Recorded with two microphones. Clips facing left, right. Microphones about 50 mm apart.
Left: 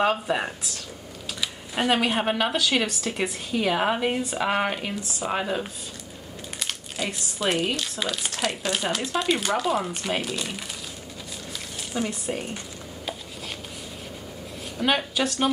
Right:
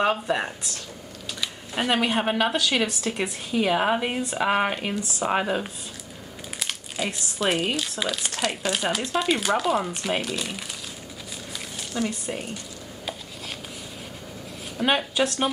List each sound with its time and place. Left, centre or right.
0.0 s speech: centre
12.1 s speech: centre
14.8 s speech: centre